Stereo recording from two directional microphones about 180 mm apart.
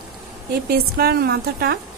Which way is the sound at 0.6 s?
60° right (ahead or behind).